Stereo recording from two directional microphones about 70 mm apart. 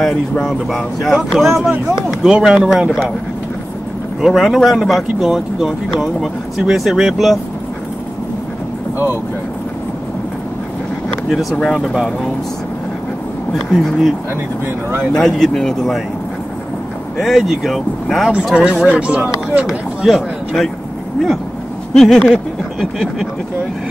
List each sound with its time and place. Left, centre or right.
0.0 s speech: centre
1.7 s speech: centre
4.2 s speech: centre
11.6 s speech: centre
13.7 s speech: centre
15.1 s speech: centre
17.2 s speech: centre
18.9 s speech: centre
20.1 s speech: centre
21.9 s speech: centre